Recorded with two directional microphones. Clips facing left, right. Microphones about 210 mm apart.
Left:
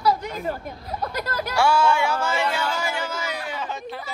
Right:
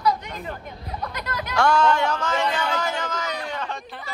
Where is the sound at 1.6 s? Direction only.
10° left (ahead or behind).